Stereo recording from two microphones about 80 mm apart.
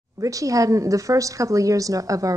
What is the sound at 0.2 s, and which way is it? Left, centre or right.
A woman's voice, right.